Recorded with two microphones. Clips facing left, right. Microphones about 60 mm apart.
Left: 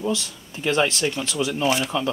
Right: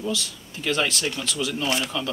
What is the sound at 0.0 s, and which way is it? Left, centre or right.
Speech, left.